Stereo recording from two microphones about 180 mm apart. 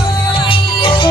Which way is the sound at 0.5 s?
30° left (ahead or behind).